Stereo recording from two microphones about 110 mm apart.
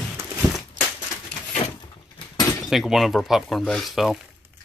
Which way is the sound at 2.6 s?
Centre (ahead or behind).